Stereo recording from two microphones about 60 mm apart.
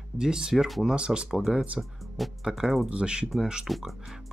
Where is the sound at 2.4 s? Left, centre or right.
Centre.